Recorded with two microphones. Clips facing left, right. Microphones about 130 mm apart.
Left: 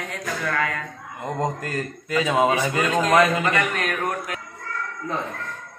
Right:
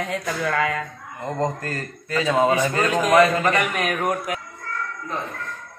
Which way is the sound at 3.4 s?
15° right (ahead or behind).